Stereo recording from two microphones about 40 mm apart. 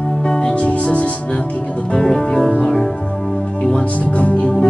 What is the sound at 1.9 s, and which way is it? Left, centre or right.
Music, centre.